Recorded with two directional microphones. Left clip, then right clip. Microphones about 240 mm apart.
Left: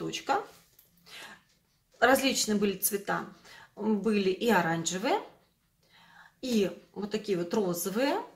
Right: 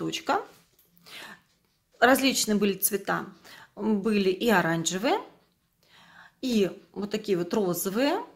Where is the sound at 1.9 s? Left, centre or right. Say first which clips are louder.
Right 3 dB; right.